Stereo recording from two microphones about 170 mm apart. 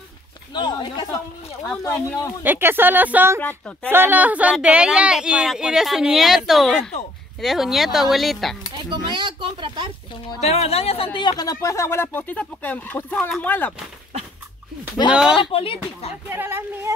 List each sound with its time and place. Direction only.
0.5 s speech: 25° left (ahead or behind)
2.4 s speech: 10° right (ahead or behind)
3.3 s speech: 10° left (ahead or behind)
3.9 s speech: 10° right (ahead or behind)
8.9 s speech: 25° right (ahead or behind)
10.4 s speech: 40° left (ahead or behind); by 13.7 s 10° left (ahead or behind)
15.1 s speech: 5° right (ahead or behind)
15.5 s speech: 35° left (ahead or behind)
16.3 s speech: 15° right (ahead or behind)